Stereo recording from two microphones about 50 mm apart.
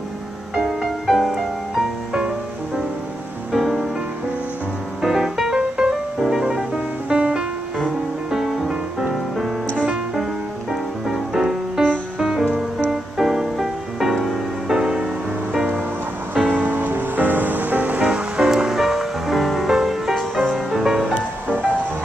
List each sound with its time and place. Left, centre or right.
1.0 s music: centre
2.1 s music: centre
3.5 s music: centre
5.0 s music: centre
10.7 s music: centre
14.8 s music: centre
16.4 s music: right
16.7 s music: right
18.0 s music: centre
18.5 s music: centre
21.0 s music: right